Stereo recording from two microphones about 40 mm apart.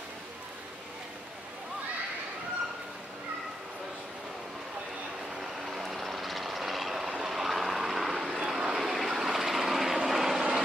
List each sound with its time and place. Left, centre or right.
5.7 s vehicle: centre